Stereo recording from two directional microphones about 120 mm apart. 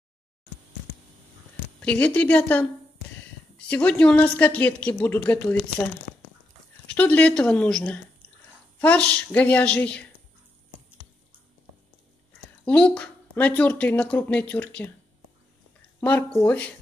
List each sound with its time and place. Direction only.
1.8 s speech: 10° left (ahead or behind)
3.6 s speech: 10° left (ahead or behind)
7.0 s speech: 15° left (ahead or behind)
12.6 s speech: 10° left (ahead or behind)
16.0 s speech: 15° left (ahead or behind)